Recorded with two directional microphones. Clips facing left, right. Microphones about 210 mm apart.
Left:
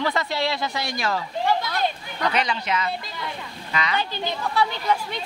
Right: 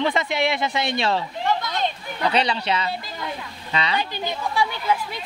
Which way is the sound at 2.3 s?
30° right (ahead or behind).